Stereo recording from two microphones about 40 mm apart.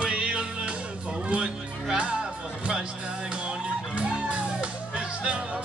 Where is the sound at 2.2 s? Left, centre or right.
Centre.